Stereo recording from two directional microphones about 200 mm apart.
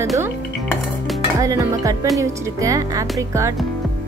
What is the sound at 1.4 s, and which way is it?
Speech, 15° right (ahead or behind).